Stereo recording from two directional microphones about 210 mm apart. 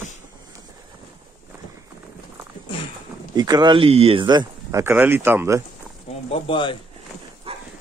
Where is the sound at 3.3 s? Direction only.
20° right (ahead or behind).